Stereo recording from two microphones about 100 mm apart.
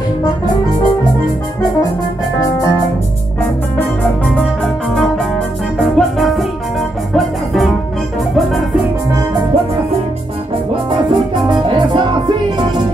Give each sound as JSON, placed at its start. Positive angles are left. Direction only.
{"t": 2.4, "sound": "music", "side_deg": 35}
{"t": 5.9, "sound": "music", "side_deg": 0}
{"t": 10.9, "sound": "music", "side_deg": -50}